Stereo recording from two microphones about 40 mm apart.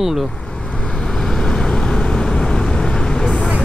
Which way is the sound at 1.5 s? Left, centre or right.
Centre.